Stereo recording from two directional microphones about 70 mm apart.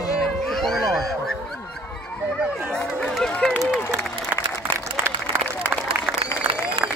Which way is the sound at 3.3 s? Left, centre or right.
Centre.